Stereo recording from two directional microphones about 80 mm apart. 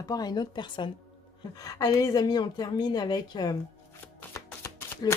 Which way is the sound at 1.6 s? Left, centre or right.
Left.